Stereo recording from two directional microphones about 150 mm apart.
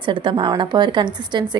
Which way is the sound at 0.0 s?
35° right (ahead or behind).